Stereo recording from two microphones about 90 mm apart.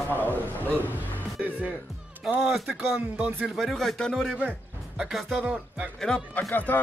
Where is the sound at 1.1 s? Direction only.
15° right (ahead or behind).